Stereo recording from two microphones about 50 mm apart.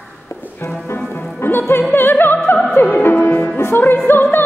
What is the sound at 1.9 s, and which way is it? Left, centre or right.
Opera, left.